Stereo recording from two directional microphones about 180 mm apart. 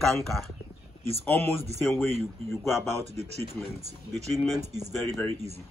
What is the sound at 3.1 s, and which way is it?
Speech, 35° right (ahead or behind).